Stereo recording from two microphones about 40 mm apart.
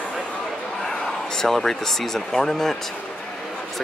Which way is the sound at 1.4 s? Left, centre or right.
Centre.